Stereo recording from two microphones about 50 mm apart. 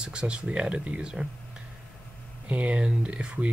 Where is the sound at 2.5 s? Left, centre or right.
Right.